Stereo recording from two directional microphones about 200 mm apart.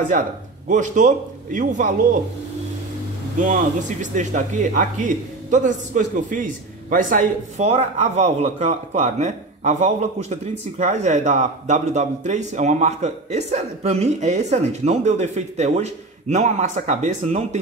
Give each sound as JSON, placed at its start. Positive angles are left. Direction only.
{"t": 0.7, "sound": "speech", "side_deg": -40}
{"t": 3.3, "sound": "speech", "side_deg": -40}